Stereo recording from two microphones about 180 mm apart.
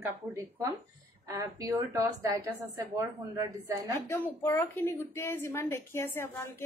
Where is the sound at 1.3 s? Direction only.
20° right (ahead or behind).